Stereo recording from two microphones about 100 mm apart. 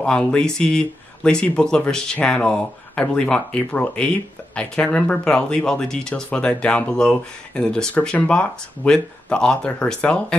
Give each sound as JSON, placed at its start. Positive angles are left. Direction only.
{"t": 0.0, "sound": "speech", "side_deg": 10}